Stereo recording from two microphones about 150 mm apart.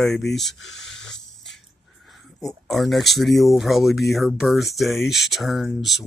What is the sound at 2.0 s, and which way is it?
Speech, centre (ahead or behind).